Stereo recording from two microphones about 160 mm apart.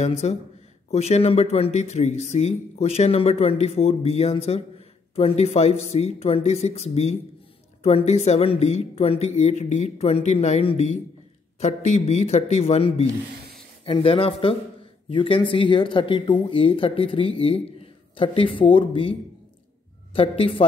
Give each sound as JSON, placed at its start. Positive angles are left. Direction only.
{"t": 0.2, "sound": "a man's voice", "side_deg": 45}